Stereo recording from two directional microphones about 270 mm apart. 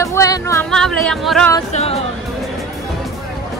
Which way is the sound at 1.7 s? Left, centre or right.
Left.